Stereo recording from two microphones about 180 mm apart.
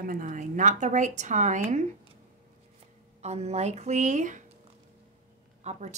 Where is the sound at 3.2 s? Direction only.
35° right (ahead or behind).